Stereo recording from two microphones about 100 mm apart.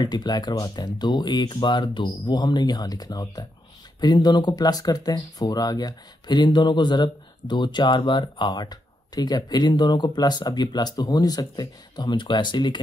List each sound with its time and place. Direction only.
0.0 s speech: 45° left (ahead or behind)